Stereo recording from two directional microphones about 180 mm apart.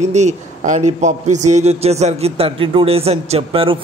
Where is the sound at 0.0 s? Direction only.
40° right (ahead or behind).